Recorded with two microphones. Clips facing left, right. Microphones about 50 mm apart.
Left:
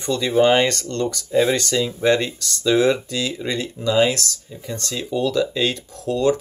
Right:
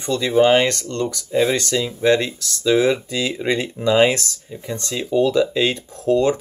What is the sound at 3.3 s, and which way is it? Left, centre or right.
Speech, right.